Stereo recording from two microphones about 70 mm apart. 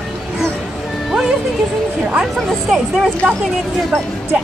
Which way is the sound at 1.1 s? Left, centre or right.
Centre.